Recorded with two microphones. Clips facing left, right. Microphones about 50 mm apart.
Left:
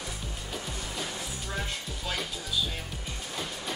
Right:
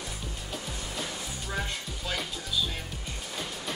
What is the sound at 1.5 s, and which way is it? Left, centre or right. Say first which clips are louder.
Music: right 2 dB; centre.